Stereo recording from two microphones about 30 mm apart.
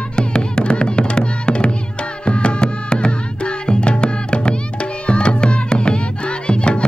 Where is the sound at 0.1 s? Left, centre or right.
Left.